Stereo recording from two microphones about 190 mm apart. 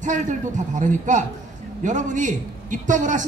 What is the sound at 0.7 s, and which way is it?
A man's voice, 40° right (ahead or behind).